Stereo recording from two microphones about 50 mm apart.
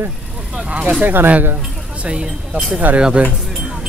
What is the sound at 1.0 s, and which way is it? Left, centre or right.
Speech, right.